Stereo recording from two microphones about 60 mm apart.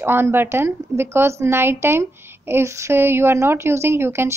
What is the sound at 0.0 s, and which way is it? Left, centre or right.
A woman's voice, right.